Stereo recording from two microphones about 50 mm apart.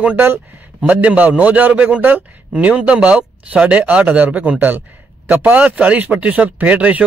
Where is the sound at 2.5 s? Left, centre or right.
Right.